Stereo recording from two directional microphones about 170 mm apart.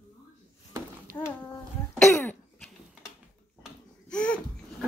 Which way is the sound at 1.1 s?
55° right (ahead or behind).